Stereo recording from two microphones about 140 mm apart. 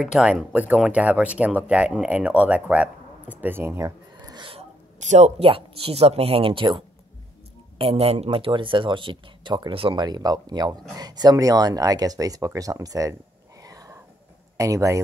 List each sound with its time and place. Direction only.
0.0 s speech: 5° right (ahead or behind)
3.3 s a sound: 15° right (ahead or behind)
4.5 s a sound: 50° right (ahead or behind)
5.4 s speech: 40° right (ahead or behind)
7.8 s speech: 45° right (ahead or behind); by 13.1 s 25° right (ahead or behind)
13.6 s whispering: 25° right (ahead or behind)
14.6 s speech: 20° right (ahead or behind)